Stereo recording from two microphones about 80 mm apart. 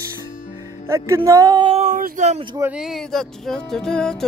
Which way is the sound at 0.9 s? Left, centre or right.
Right.